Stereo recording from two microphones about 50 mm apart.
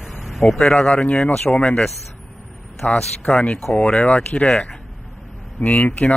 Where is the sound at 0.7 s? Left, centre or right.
Left.